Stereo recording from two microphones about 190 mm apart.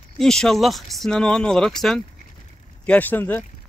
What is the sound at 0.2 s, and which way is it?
Speech, 5° left (ahead or behind).